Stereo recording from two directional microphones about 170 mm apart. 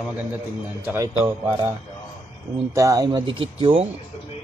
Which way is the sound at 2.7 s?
20° right (ahead or behind).